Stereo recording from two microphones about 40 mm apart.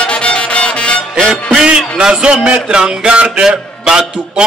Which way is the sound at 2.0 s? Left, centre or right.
Centre.